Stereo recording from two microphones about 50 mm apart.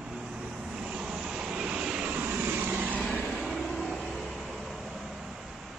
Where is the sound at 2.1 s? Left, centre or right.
Right.